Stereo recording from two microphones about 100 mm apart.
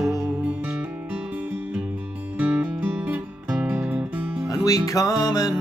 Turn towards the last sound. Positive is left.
turn(degrees=40)  # may be behind; listen again after turning